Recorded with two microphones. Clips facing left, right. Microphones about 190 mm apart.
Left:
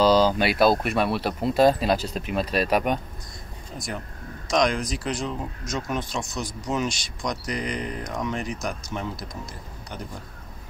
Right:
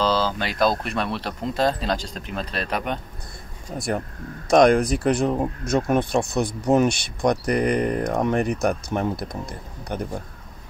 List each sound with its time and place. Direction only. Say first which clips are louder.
0.0 s speech: left 4 dB; 15° left (ahead or behind)
3.7 s speech: right 8 dB; 60° right (ahead or behind)